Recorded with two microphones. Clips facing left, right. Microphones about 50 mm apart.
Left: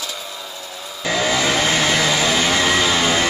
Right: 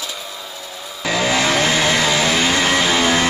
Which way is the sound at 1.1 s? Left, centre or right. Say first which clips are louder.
Right 1 dB; right.